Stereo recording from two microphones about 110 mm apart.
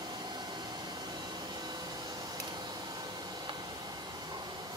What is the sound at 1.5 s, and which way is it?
Vacuum cleaner, 40° right (ahead or behind).